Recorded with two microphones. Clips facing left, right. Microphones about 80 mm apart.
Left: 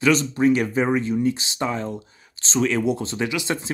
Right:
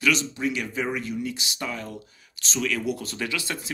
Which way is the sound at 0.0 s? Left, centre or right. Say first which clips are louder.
Left 7 dB; left.